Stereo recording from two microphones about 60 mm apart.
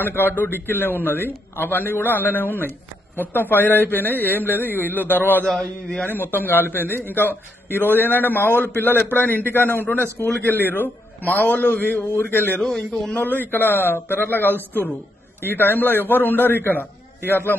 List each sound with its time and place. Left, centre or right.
0.0 s a man's voice: left
5.6 s a man's voice: centre
6.0 s a man's voice: left
12.5 s a man's voice: centre
13.2 s a man's voice: left